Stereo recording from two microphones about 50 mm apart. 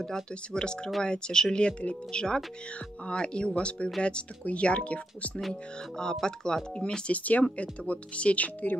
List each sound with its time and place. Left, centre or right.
0.0 s speech: centre
5.5 s speech: centre
6.8 s speech: left